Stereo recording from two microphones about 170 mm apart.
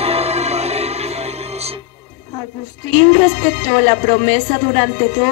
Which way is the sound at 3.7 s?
35° right (ahead or behind).